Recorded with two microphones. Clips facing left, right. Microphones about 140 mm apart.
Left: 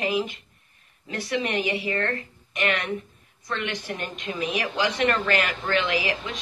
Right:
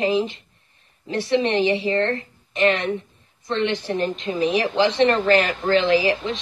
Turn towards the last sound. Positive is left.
turn(degrees=-30)  # may be behind; listen again after turning